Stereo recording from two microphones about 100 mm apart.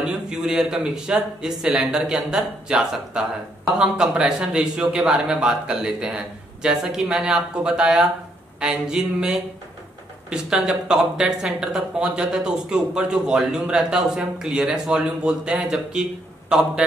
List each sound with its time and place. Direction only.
0.0 s speech: 10° right (ahead or behind)